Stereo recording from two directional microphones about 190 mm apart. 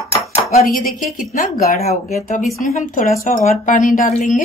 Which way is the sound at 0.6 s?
50° left (ahead or behind).